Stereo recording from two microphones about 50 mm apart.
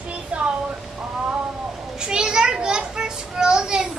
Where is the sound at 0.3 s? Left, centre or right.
Right.